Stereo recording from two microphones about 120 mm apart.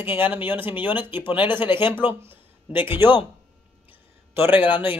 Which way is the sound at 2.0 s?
15° right (ahead or behind).